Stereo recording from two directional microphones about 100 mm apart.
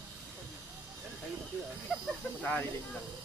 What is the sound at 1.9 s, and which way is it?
Speech, 5° right (ahead or behind).